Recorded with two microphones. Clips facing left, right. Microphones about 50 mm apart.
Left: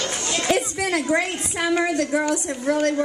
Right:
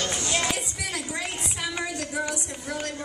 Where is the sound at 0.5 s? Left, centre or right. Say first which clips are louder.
Left 9 dB; left.